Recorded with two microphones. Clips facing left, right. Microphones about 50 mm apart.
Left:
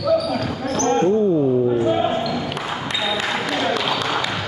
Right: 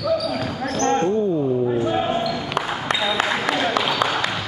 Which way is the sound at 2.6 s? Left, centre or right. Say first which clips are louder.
Right 3 dB; right.